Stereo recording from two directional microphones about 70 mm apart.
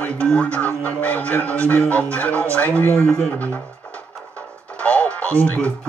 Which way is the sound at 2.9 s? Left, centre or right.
Centre.